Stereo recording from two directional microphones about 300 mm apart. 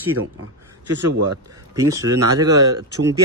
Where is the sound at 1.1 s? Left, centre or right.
Right.